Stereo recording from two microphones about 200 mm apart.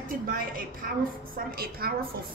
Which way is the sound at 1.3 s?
50° right (ahead or behind).